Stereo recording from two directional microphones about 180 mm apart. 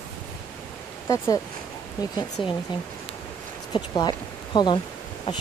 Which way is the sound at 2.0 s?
25° left (ahead or behind).